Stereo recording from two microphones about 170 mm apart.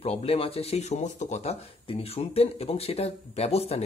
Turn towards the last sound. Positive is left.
turn(degrees=35)  # may be behind; listen again after turning